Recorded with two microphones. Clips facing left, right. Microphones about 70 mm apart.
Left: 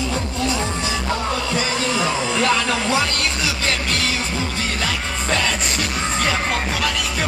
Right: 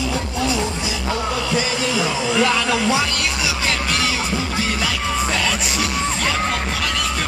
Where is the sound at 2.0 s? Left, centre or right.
Centre.